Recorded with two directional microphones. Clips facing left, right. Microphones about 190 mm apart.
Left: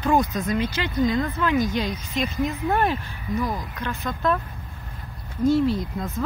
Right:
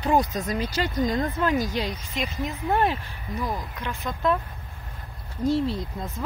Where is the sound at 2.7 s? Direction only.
20° right (ahead or behind).